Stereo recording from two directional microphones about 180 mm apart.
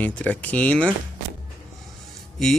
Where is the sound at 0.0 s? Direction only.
10° left (ahead or behind).